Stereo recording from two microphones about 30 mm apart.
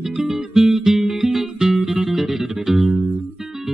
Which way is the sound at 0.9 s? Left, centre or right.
Centre.